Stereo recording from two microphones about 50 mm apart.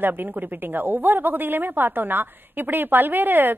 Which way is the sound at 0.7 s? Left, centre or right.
Right.